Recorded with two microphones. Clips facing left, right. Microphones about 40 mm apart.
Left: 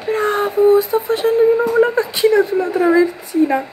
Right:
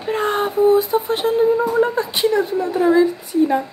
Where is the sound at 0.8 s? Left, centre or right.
Left.